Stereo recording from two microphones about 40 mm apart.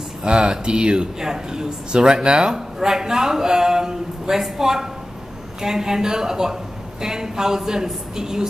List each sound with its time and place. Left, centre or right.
0.2 s speech: right